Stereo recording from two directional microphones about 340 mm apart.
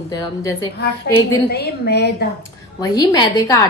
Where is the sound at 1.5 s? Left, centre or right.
Left.